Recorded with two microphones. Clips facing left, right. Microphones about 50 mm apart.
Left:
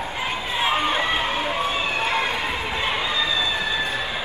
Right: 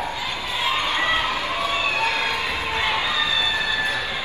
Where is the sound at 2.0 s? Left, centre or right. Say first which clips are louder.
Even; left.